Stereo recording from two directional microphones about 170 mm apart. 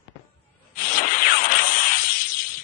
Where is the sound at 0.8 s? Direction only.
55° left (ahead or behind).